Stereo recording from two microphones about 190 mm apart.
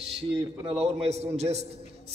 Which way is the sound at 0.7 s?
35° right (ahead or behind).